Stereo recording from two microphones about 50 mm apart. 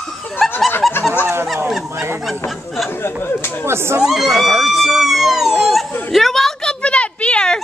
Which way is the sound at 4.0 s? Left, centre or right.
Centre.